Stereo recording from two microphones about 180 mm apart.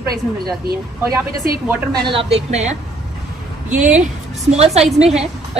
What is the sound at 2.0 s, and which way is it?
Speech, 30° right (ahead or behind).